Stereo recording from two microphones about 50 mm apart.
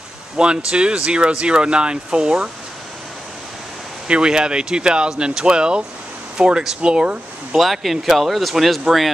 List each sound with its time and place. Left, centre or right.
0.7 s speech: right
4.1 s speech: centre
7.5 s speech: centre